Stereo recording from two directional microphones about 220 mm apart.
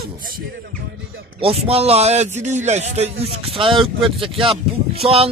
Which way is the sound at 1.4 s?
25° right (ahead or behind).